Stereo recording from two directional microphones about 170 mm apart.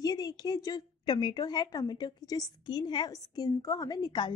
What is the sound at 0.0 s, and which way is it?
A woman's voice, 20° left (ahead or behind).